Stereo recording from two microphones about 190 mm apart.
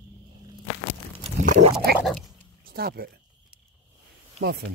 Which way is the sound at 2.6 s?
55° right (ahead or behind).